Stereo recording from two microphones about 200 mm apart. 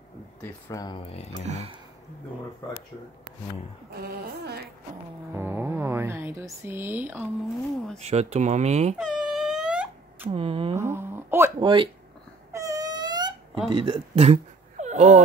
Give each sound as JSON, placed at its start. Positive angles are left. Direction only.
{"t": 0.4, "sound": "speech", "side_deg": 15}
{"t": 1.4, "sound": "speech", "side_deg": -35}
{"t": 3.9, "sound": "music", "side_deg": -50}
{"t": 5.3, "sound": "speech", "side_deg": -10}
{"t": 8.0, "sound": "speech", "side_deg": -30}
{"t": 8.9, "sound": "wail", "side_deg": 0}
{"t": 10.3, "sound": "speech", "side_deg": -25}
{"t": 10.8, "sound": "a sound", "side_deg": -10}
{"t": 11.6, "sound": "speech", "side_deg": -25}
{"t": 12.5, "sound": "wail", "side_deg": -15}
{"t": 13.7, "sound": "speech", "side_deg": -25}